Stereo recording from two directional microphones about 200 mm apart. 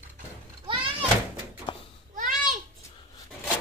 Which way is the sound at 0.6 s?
25° right (ahead or behind).